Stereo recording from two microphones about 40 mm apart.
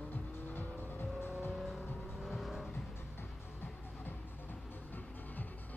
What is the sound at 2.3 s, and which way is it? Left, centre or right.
Vehicle, centre.